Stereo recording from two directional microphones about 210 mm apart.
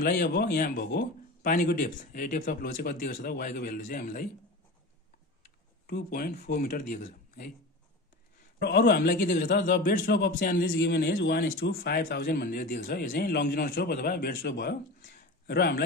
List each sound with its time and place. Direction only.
0.0 s a man's voice: 45° left (ahead or behind)
5.9 s a man's voice: 50° left (ahead or behind)
6.8 s a man's voice: 40° left (ahead or behind)
8.5 s a man's voice: 50° left (ahead or behind)